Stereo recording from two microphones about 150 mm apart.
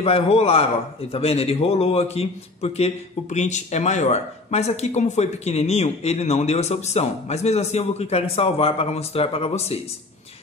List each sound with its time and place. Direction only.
0.0 s a man's voice: 45° left (ahead or behind)